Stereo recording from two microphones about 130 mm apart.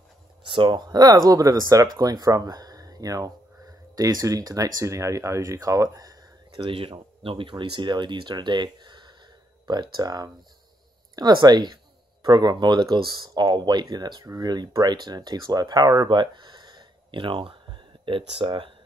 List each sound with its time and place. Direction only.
0.5 s speech: 35° right (ahead or behind)
6.5 s speech: 45° right (ahead or behind)